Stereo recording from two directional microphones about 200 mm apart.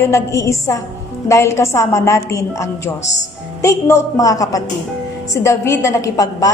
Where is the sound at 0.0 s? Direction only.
15° left (ahead or behind).